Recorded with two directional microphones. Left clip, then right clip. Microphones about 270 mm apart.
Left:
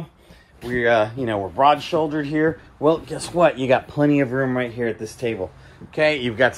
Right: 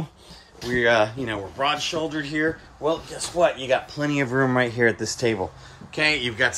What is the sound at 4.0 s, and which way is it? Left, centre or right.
Speech, centre.